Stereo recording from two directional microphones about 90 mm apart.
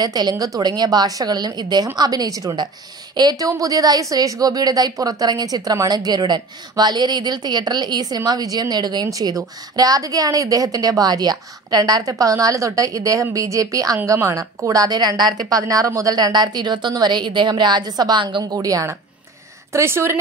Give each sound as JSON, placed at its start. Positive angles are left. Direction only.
{"t": 0.0, "sound": "a woman's voice", "side_deg": -50}
{"t": 18.4, "sound": "a woman's voice", "side_deg": -40}